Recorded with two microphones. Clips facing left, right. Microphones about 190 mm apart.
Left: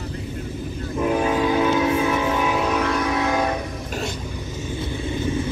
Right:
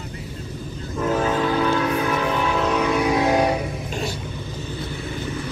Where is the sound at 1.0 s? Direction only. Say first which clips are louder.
Left 1 dB; 15° left (ahead or behind).